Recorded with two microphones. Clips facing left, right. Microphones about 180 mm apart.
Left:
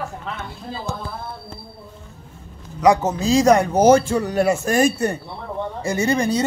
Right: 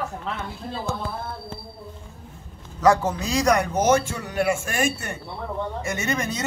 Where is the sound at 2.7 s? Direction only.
20° left (ahead or behind).